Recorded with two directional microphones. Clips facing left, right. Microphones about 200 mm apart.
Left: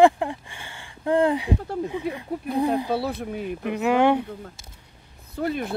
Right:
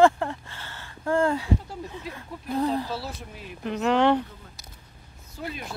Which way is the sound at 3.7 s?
10° left (ahead or behind).